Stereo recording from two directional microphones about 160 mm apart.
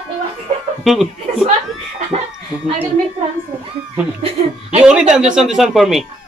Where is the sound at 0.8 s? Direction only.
Centre (ahead or behind).